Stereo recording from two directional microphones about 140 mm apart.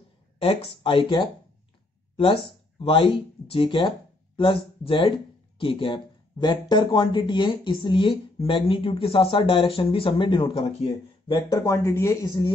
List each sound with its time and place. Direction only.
0.4 s speech: 40° left (ahead or behind); by 12.3 s 20° left (ahead or behind)